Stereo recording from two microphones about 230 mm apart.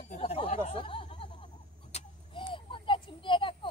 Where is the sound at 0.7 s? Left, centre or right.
Left.